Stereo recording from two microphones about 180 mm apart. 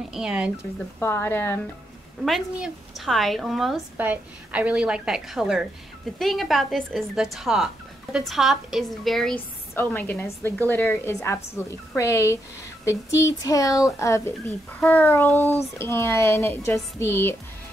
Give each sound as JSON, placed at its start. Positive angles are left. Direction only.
{"t": 0.1, "sound": "a woman's voice", "side_deg": -5}
{"t": 0.9, "sound": "speech", "side_deg": 15}
{"t": 2.2, "sound": "a woman's voice", "side_deg": 0}